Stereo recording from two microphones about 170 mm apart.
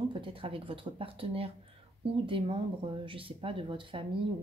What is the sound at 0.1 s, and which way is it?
Speech, 30° right (ahead or behind).